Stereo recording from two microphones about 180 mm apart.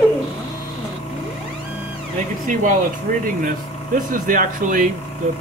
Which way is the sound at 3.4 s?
45° right (ahead or behind).